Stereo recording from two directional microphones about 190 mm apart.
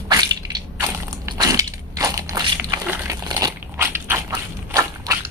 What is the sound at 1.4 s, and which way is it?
Crushing, 20° right (ahead or behind).